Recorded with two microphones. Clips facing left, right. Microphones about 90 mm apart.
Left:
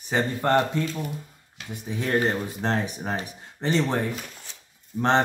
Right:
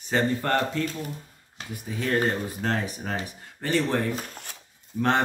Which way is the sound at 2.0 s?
25° left (ahead or behind).